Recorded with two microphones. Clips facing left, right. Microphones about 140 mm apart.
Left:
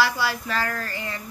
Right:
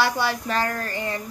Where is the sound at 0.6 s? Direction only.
35° right (ahead or behind).